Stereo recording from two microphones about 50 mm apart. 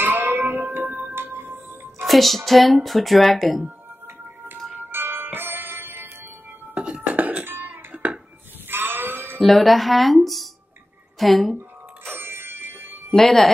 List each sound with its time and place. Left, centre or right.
0.0 s music: right
1.1 s music: right
2.0 s speech: centre
4.7 s music: right
6.7 s music: right
7.9 s a sound: right
8.6 s a sound: right
9.4 s speech: centre
11.5 s music: right
13.1 s speech: centre